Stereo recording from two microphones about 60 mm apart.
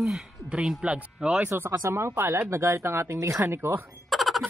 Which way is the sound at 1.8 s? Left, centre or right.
Right.